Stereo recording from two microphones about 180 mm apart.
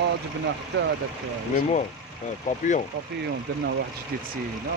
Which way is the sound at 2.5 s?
45° left (ahead or behind).